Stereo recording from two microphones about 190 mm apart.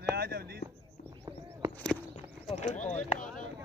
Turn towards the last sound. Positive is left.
turn(degrees=5)  # may be behind; listen again after turning